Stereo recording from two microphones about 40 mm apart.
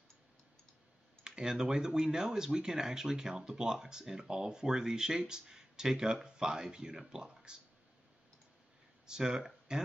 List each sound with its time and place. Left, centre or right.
1.2 s computer keyboard: centre
1.5 s speech: centre
9.0 s speech: centre